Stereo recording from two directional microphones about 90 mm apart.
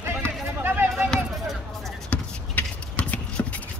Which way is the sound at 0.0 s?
25° right (ahead or behind).